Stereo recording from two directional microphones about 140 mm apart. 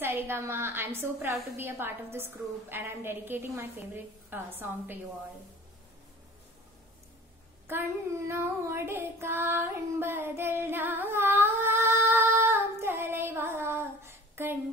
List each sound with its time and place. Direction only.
0.0 s a woman's voice: 15° right (ahead or behind)
7.6 s child singing: 15° right (ahead or behind)